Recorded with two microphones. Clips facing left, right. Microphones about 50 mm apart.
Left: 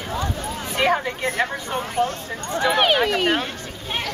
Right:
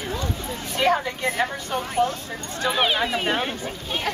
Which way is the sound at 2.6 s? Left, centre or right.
Left.